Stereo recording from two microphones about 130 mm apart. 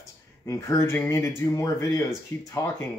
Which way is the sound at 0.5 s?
20° left (ahead or behind).